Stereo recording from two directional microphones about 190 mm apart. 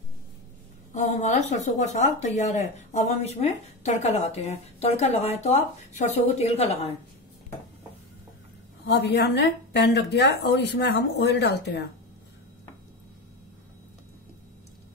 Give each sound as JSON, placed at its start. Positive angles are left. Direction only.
{"t": 0.9, "sound": "speech", "side_deg": 35}
{"t": 8.8, "sound": "a woman's voice", "side_deg": 65}